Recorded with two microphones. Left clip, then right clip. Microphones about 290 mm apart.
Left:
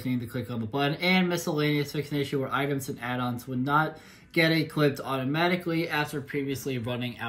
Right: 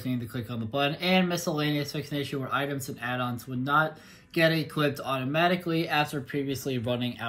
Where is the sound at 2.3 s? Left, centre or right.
Centre.